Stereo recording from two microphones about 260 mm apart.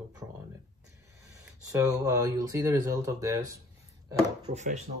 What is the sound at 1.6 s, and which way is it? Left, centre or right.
Speech, centre.